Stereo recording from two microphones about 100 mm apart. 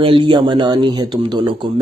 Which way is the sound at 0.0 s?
60° right (ahead or behind).